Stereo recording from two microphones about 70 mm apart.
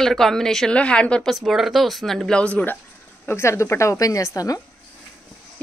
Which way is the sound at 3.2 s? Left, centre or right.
Left.